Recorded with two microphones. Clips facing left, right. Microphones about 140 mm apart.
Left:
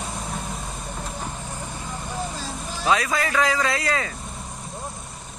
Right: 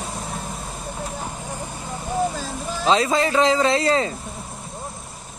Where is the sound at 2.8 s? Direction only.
25° right (ahead or behind).